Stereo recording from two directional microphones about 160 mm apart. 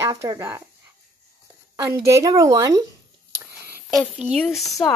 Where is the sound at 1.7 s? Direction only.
20° right (ahead or behind).